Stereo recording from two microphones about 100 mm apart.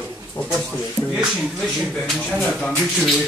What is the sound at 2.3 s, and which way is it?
Speech, 5° left (ahead or behind).